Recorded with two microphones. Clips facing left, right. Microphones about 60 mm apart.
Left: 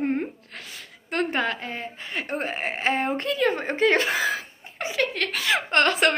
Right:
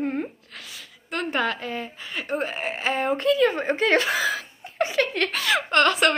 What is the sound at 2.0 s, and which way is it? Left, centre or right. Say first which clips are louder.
Speech: right 1 dB; left.